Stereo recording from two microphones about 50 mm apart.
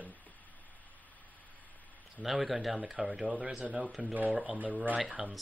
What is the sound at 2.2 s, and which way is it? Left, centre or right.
Speech, centre.